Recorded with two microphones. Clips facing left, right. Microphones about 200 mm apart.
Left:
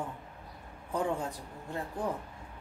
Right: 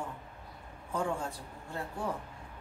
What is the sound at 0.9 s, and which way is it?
Speech, 20° left (ahead or behind).